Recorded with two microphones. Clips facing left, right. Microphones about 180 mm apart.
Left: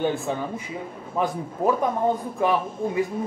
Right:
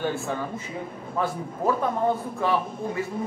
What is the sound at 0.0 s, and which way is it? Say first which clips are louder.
A man's voice: left 3 dB; 20° left (ahead or behind).